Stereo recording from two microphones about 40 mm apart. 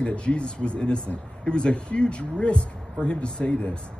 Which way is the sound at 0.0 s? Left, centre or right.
Left.